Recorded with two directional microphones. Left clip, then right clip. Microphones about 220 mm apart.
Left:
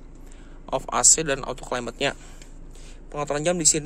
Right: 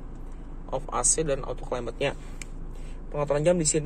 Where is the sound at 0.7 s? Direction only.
25° left (ahead or behind).